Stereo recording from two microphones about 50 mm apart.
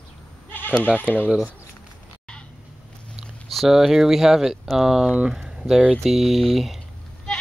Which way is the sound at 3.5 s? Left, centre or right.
Centre.